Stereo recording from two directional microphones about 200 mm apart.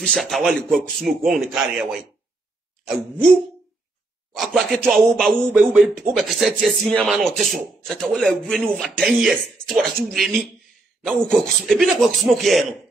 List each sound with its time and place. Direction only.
0.0 s a man's voice: centre (ahead or behind)
4.4 s a man's voice: centre (ahead or behind)